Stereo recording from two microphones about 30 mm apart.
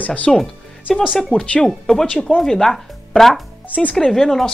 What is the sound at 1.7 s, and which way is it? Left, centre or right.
Speech, centre.